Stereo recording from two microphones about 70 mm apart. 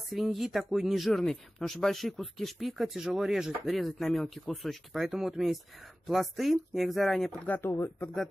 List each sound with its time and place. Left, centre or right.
0.1 s speech: centre
3.6 s speech: centre
7.4 s speech: left